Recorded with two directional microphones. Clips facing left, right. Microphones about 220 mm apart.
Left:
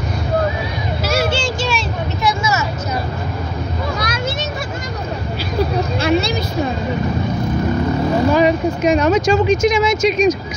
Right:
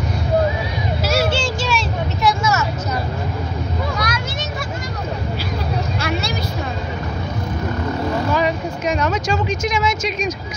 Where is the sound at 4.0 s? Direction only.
25° left (ahead or behind).